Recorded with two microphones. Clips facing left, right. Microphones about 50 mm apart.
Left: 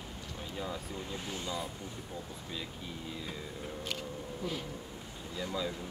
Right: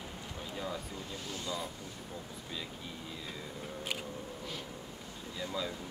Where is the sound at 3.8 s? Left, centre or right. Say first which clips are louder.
Right 1 dB; centre.